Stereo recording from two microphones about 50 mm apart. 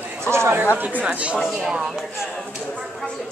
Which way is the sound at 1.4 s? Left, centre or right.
Centre.